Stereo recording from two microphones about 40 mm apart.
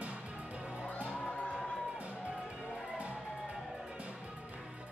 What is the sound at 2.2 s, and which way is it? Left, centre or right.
Music, right.